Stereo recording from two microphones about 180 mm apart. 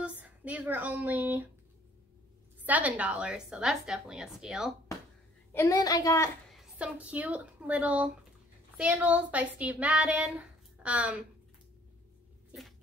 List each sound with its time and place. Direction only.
0.0 s speech: 10° right (ahead or behind)
2.6 s a woman's voice: 10° right (ahead or behind)
5.5 s a woman's voice: 15° left (ahead or behind)
6.5 s a woman's voice: 5° right (ahead or behind)